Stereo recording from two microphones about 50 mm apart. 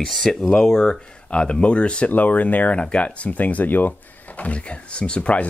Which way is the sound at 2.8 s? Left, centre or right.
Left.